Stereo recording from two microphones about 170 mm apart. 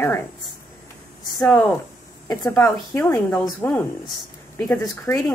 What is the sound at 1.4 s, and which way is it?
Speech, 10° left (ahead or behind).